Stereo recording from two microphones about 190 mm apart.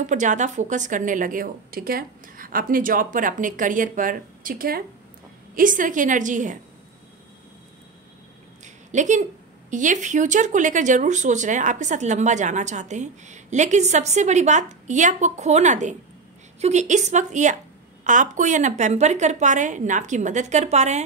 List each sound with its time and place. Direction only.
0.0 s speech: 40° right (ahead or behind)
8.6 s a sound: 40° right (ahead or behind)
9.7 s speech: 40° right (ahead or behind)